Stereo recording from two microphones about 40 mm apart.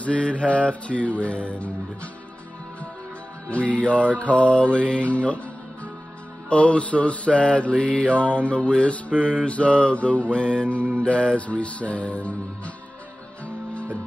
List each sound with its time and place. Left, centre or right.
0.2 s music: left
3.4 s music: left
6.5 s mantra: left
8.5 s music: left
9.1 s mantra: right
9.4 s music: left
10.3 s mantra: left
11.4 s music: left